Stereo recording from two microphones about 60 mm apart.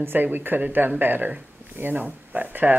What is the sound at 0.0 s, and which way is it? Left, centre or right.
A woman's voice, right.